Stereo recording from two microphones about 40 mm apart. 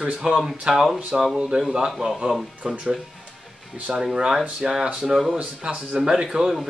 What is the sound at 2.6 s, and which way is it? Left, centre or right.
Speech, right.